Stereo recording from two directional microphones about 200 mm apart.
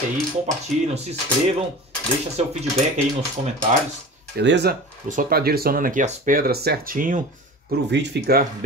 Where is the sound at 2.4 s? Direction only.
35° right (ahead or behind).